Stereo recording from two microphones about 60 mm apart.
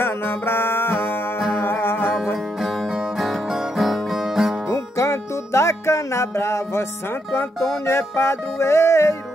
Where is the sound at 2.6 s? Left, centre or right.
Centre.